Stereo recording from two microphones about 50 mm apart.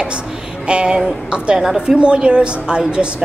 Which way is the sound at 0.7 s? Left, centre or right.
Centre.